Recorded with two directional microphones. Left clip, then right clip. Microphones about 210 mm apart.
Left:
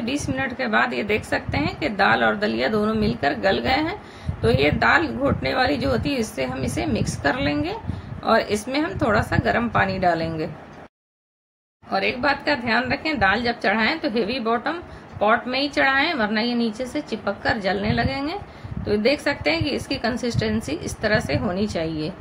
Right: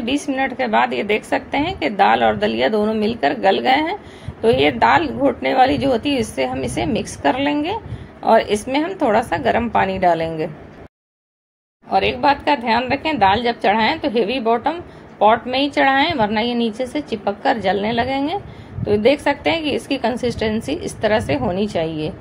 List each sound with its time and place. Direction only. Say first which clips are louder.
0.0 s a woman's voice: right 5 dB; centre (ahead or behind)
1.9 s speech: right 4 dB; 40° left (ahead or behind)
2.4 s a woman's voice: right 4 dB; centre (ahead or behind)
7.2 s speech: right 5 dB; 35° left (ahead or behind)
8.4 s a woman's voice: right 5 dB; centre (ahead or behind)
11.9 s a woman's voice: right 6 dB; centre (ahead or behind)